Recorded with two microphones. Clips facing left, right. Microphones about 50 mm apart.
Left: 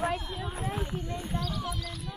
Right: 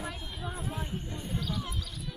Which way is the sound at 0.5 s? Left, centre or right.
Left.